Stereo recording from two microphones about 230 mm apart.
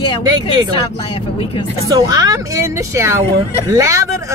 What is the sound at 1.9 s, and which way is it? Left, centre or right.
Speech, centre.